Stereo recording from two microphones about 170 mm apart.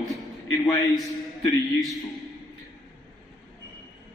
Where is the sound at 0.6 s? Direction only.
20° left (ahead or behind).